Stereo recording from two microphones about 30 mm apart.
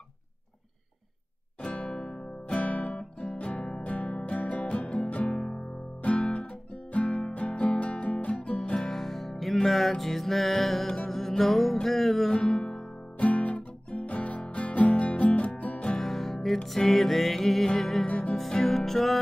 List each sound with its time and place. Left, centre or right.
1.8 s music: left
2.5 s music: left
3.8 s music: left
6.0 s guitar: left
8.7 s music: centre
12.4 s music: left
13.2 s music: left
16.0 s music: centre